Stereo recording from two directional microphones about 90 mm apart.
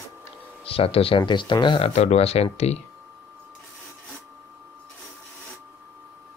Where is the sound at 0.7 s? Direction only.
90° left; by 1.9 s 65° left (ahead or behind).